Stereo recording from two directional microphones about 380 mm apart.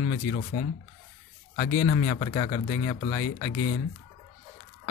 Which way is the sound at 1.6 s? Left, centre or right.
Centre.